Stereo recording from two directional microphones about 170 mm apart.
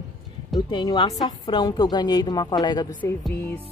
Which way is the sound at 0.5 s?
25° left (ahead or behind).